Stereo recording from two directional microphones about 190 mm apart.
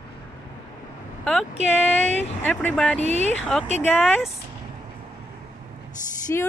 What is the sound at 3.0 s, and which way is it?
Speech, 35° right (ahead or behind).